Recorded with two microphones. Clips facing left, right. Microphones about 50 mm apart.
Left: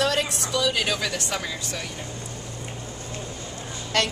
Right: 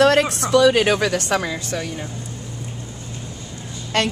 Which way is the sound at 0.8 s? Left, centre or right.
Right.